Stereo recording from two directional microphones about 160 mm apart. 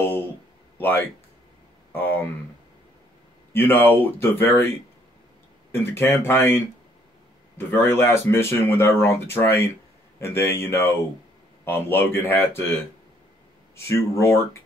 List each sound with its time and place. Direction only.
0.0 s a sound: 15° left (ahead or behind)
0.7 s speech: 10° left (ahead or behind)
3.5 s speech: 10° left (ahead or behind)
13.7 s speech: 15° left (ahead or behind)